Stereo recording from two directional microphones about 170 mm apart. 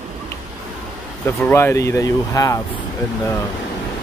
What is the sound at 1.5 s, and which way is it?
Speech, 15° left (ahead or behind).